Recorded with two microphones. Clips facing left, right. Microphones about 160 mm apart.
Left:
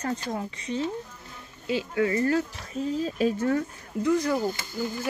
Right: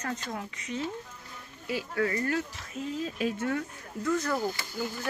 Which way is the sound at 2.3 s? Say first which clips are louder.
Left 6 dB; 35° left (ahead or behind).